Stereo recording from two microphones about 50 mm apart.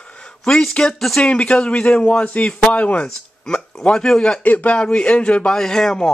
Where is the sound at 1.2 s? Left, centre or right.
Left.